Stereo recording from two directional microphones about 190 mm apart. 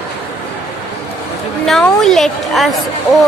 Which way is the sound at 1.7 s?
Centre (ahead or behind).